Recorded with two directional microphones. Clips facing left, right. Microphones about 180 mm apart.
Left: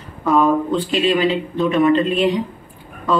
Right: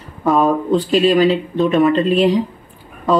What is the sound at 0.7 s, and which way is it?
Speech, 40° right (ahead or behind).